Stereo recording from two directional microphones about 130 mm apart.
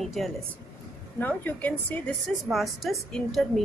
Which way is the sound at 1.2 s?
15° left (ahead or behind).